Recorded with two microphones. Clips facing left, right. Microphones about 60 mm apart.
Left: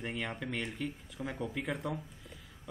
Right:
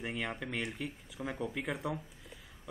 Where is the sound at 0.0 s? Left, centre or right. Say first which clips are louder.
Even; centre.